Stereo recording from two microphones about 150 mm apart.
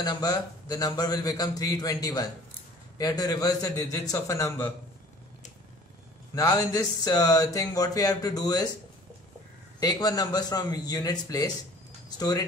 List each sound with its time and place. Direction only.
0.0 s speech: 25° left (ahead or behind)
6.3 s speech: 25° left (ahead or behind)
9.8 s speech: 25° left (ahead or behind)